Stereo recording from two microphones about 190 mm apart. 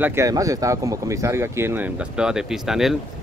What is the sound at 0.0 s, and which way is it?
Speech, 15° right (ahead or behind).